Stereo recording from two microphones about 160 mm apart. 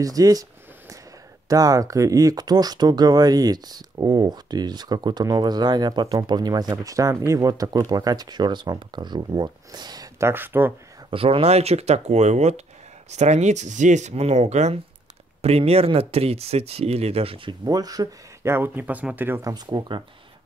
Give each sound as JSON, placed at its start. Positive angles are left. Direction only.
{"t": 0.0, "sound": "a sound", "side_deg": -25}
{"t": 1.5, "sound": "speech", "side_deg": -20}
{"t": 10.3, "sound": "speech", "side_deg": -15}
{"t": 11.1, "sound": "speech", "side_deg": -35}
{"t": 19.5, "sound": "speech", "side_deg": -25}